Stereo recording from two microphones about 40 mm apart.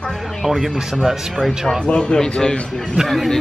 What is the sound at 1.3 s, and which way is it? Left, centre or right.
Speech, centre.